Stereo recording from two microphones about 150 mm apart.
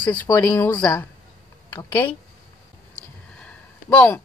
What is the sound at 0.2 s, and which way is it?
Speech, 20° left (ahead or behind).